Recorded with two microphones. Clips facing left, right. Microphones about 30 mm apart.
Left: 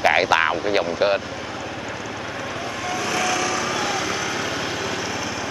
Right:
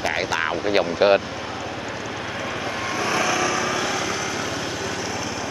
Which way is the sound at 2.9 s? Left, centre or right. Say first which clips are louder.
Right 1 dB; centre.